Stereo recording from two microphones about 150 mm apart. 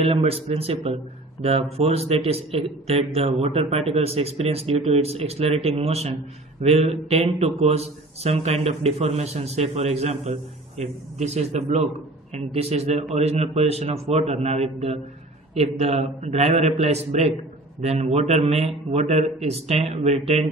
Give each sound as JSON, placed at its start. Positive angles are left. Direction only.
{"t": 0.0, "sound": "a man's voice", "side_deg": -40}